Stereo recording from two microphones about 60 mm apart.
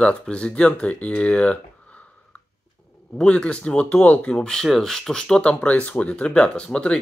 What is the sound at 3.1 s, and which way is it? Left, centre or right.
Speech, centre.